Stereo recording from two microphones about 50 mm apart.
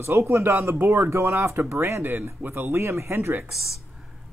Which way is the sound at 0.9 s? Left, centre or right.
Right.